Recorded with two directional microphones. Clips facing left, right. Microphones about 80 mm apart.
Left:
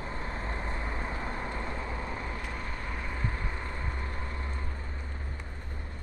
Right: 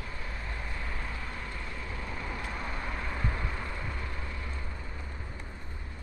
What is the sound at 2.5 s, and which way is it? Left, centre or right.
Vehicle, centre.